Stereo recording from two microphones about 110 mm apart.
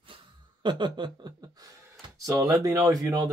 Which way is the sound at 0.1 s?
45° right (ahead or behind).